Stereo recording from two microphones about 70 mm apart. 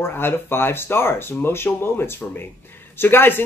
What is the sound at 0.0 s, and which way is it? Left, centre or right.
Speech, left.